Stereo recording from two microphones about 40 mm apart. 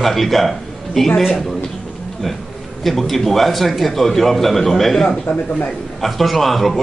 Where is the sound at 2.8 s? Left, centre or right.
Centre.